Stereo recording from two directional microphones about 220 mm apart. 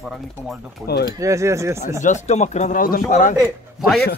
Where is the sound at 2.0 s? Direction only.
30° left (ahead or behind).